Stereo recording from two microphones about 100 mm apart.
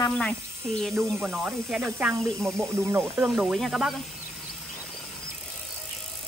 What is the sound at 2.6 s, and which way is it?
Speech, 25° right (ahead or behind).